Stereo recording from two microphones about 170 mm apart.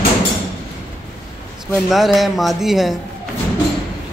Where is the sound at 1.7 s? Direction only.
Centre (ahead or behind).